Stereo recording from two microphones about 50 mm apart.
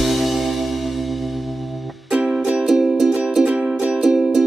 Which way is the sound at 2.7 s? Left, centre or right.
Centre.